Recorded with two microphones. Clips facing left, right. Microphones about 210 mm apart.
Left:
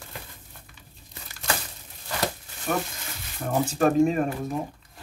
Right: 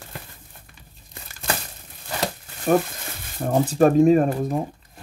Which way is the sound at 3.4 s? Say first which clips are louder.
Right 5 dB; 35° right (ahead or behind).